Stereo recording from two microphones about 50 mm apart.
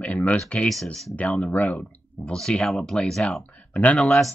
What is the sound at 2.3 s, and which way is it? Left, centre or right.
Speech, centre.